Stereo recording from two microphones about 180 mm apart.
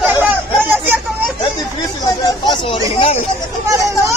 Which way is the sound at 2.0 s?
20° left (ahead or behind).